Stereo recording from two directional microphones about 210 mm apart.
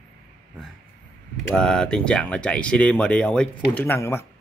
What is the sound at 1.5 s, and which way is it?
A man's voice, 5° left (ahead or behind).